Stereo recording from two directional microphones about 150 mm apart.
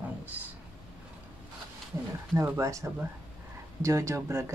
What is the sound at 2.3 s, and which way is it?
Speech, 15° right (ahead or behind).